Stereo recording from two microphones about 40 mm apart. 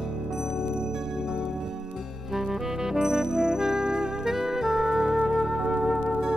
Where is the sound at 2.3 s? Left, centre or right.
Centre.